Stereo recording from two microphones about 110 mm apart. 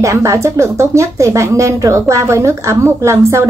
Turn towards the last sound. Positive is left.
turn(degrees=-25)  # may be behind; listen again after turning